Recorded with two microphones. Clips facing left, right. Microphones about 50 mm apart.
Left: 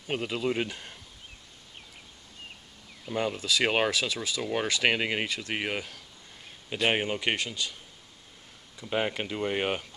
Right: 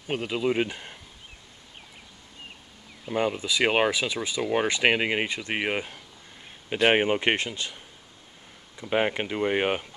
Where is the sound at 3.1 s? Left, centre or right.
Centre.